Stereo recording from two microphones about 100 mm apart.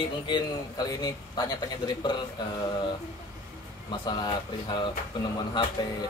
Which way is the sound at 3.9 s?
50° left (ahead or behind).